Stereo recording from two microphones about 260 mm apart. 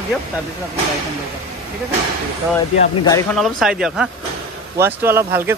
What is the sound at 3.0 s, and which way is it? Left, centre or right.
Speech, centre.